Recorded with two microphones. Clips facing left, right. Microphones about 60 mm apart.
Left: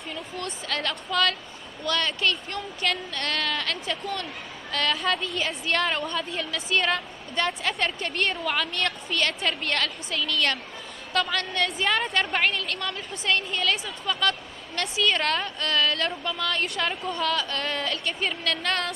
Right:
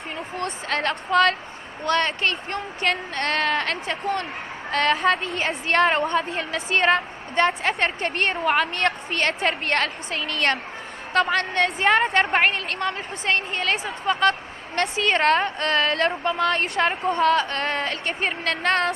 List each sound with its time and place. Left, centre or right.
0.1 s a woman's voice: right